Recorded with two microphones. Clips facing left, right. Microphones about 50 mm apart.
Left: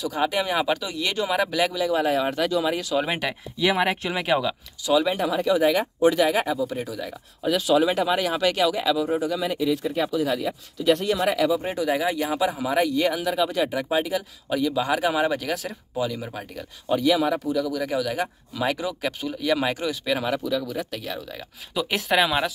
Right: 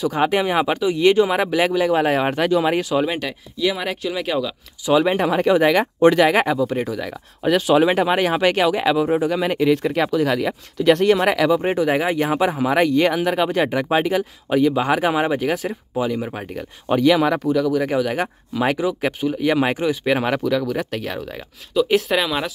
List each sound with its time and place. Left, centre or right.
0.0 s speech: right
3.1 s speech: centre
4.8 s speech: right
5.6 s speech: right
6.7 s speech: right
7.6 s speech: right
11.6 s speech: right
14.5 s speech: right
16.9 s speech: right
17.7 s speech: right
20.1 s speech: right
21.7 s speech: centre